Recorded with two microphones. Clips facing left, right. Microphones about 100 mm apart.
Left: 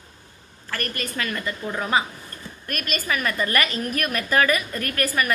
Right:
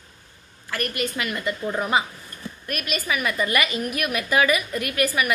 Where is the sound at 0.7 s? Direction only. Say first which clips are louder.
Right 3 dB; 15° right (ahead or behind).